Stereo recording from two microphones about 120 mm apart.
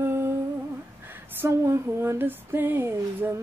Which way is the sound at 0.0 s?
20° right (ahead or behind).